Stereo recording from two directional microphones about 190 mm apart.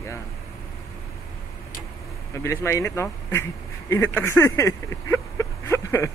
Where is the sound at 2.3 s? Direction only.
15° left (ahead or behind).